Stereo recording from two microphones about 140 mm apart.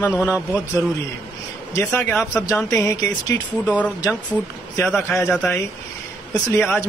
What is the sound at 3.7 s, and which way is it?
Speech, 10° left (ahead or behind).